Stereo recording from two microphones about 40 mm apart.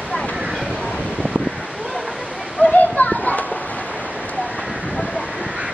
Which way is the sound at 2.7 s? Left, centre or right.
Left.